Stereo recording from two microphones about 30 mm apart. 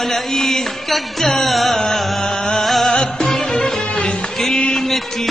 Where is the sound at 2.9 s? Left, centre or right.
Left.